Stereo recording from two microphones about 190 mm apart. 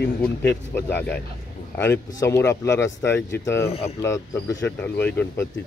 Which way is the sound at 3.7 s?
35° left (ahead or behind).